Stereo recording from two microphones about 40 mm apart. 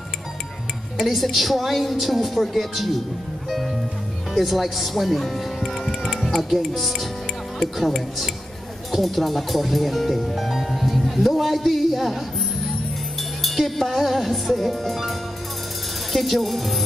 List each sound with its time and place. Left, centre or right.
0.9 s a woman's voice: centre
6.3 s a woman's voice: centre
13.4 s a woman's voice: centre